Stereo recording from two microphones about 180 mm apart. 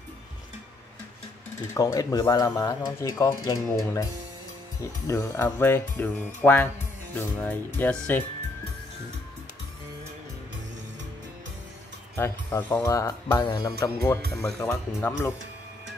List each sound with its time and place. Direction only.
1.7 s speech: 20° left (ahead or behind)
12.2 s speech: 15° left (ahead or behind)